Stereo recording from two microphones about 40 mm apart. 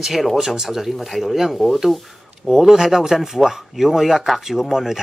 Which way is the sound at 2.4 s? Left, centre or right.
Centre.